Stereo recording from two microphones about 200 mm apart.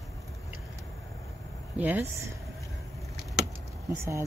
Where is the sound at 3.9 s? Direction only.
10° right (ahead or behind).